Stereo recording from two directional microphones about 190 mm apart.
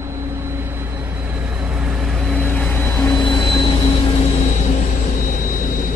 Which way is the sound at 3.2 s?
25° left (ahead or behind).